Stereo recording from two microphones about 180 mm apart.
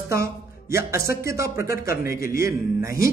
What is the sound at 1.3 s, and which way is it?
Speech, 15° right (ahead or behind).